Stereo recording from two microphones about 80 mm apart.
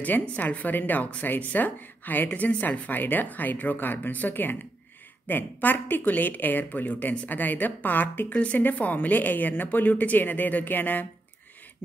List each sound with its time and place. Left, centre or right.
0.0 s speech: left